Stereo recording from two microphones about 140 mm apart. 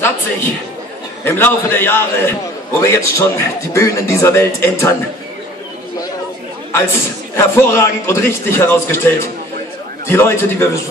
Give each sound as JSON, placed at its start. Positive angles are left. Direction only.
{"t": 1.2, "sound": "a man's voice", "side_deg": 15}
{"t": 6.7, "sound": "a man's voice", "side_deg": 20}